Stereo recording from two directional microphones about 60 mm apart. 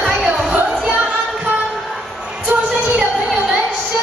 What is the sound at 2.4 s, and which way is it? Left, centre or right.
Music, centre.